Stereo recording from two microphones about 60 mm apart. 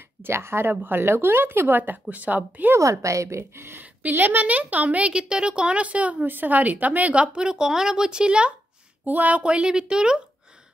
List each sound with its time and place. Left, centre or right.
0.2 s speech: right
2.8 s a woman's voice: right
3.8 s a woman's voice: right
9.0 s speech: right